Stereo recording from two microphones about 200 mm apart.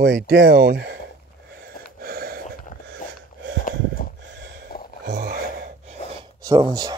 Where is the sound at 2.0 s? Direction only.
50° right (ahead or behind).